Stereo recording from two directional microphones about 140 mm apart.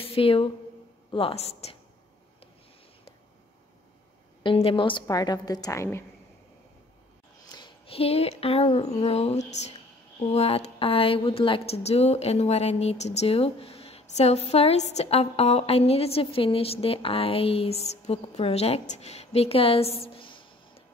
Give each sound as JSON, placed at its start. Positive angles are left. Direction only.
{"t": 0.0, "sound": "speech", "side_deg": 40}
{"t": 4.4, "sound": "a woman's voice", "side_deg": 40}
{"t": 7.5, "sound": "speech", "side_deg": 35}